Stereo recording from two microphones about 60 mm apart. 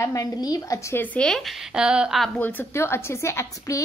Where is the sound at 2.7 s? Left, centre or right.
Left.